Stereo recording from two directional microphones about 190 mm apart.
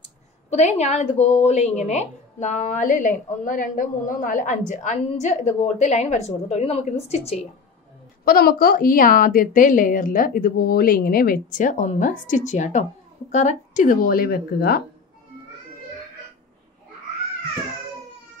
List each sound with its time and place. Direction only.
0.5 s a woman's voice: 35° left (ahead or behind)
8.3 s a woman's voice: 50° left (ahead or behind)